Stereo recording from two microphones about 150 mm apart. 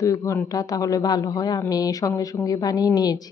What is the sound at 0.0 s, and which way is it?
Speech, 20° left (ahead or behind).